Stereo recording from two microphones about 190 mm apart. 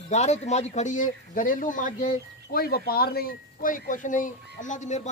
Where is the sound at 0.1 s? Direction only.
35° left (ahead or behind).